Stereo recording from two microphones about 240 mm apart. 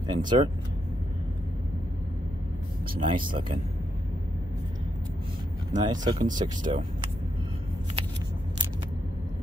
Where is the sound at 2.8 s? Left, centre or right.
Right.